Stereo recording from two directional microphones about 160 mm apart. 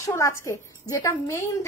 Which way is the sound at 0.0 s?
20° left (ahead or behind).